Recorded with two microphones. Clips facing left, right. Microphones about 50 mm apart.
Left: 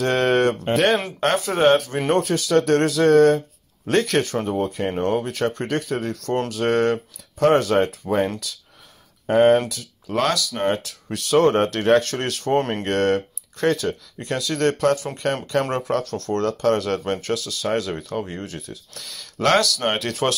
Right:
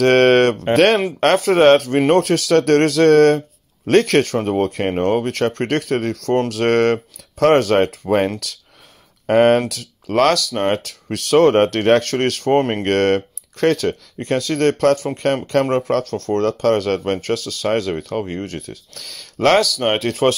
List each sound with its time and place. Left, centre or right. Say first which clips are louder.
0.0 s a sound: right 6 dB; right
1.2 s speech: right 6 dB; right
4.9 s speech: right 5 dB; right
5.3 s speech: right 4 dB; right
6.5 s speech: right 2 dB; right
9.3 s speech: right 2 dB; right
10.5 s speech: right 3 dB; right
12.8 s speech: right 4 dB; right
14.2 s speech: right 4 dB; right
18.5 s speech: right 5 dB; right
19.0 s speech: right 4 dB; right